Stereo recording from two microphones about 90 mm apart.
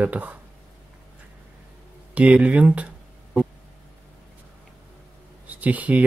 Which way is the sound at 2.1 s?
15° right (ahead or behind).